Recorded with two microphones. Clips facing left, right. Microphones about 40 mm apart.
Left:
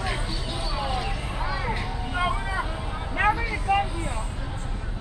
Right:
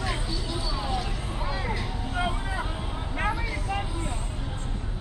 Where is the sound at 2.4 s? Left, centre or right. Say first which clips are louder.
Left 3 dB; left.